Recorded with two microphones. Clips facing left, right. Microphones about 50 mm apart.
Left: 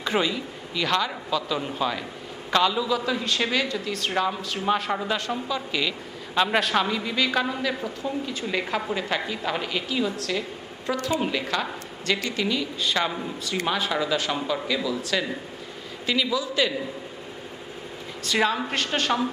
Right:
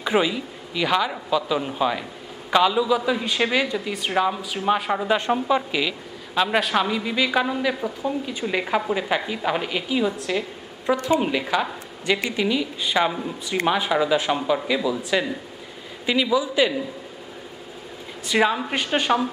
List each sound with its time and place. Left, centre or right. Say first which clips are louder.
0.0 s a woman's voice: right 3 dB; centre
5.1 s a woman's voice: right 7 dB; right
5.7 s a woman's voice: right 2 dB; centre
18.2 s a woman's voice: right 3 dB; centre